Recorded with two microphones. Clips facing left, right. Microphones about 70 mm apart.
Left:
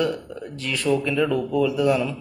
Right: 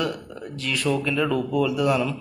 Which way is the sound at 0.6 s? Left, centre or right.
Left.